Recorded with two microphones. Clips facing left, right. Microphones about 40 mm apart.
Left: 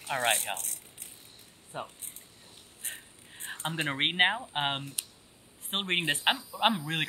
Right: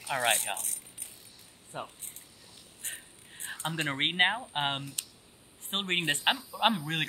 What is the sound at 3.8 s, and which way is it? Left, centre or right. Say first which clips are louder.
Speech: left 1 dB; centre.